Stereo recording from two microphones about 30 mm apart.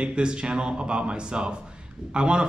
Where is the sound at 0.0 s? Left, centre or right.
Right.